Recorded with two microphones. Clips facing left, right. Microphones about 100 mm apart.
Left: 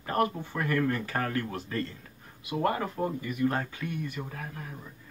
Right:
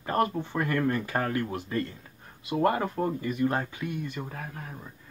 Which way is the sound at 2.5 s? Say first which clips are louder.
Right 3 dB; 30° right (ahead or behind).